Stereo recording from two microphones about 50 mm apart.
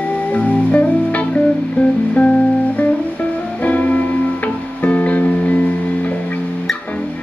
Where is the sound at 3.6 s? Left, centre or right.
Left.